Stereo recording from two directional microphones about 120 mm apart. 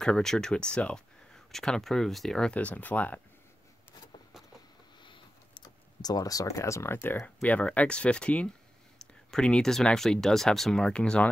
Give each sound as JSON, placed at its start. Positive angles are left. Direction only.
{"t": 0.0, "sound": "speech", "side_deg": 5}
{"t": 5.0, "sound": "a sound", "side_deg": 40}
{"t": 7.4, "sound": "speech", "side_deg": 10}